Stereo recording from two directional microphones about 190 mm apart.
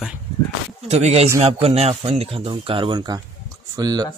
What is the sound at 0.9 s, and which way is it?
Speech, 35° right (ahead or behind).